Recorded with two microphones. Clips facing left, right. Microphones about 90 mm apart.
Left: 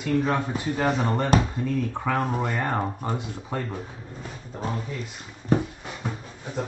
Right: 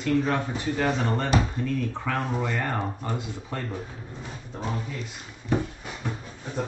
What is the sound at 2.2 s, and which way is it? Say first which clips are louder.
Speech: left 2 dB; 45° left (ahead or behind).